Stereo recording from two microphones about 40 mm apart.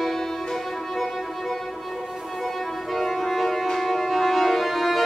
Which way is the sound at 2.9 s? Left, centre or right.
Centre.